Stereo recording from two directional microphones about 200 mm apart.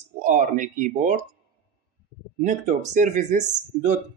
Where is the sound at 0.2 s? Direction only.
40° right (ahead or behind).